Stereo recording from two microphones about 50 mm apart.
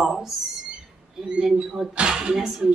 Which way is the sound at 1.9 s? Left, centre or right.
Centre.